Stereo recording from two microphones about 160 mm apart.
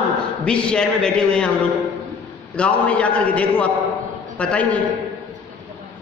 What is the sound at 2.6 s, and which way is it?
A woman's voice, 10° left (ahead or behind).